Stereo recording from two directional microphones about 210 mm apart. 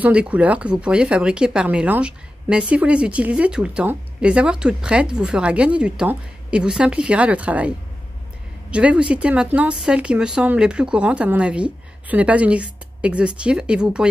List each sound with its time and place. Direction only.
0.0 s speech: 5° right (ahead or behind)